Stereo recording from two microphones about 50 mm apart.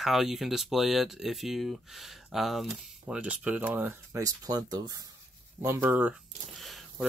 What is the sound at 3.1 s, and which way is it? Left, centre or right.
Speech, right.